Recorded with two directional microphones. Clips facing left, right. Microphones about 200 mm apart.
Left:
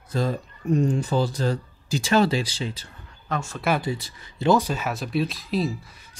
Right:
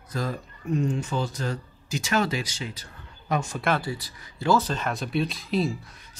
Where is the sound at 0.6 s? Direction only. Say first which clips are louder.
Left 4 dB; 40° left (ahead or behind).